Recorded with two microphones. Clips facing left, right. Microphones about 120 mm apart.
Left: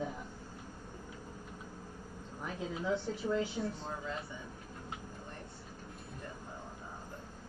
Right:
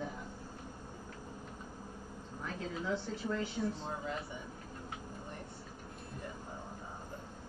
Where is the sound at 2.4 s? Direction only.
25° left (ahead or behind).